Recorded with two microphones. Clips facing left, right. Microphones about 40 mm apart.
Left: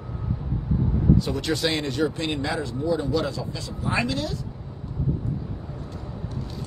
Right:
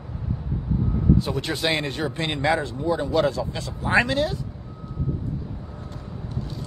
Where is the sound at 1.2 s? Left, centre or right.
Right.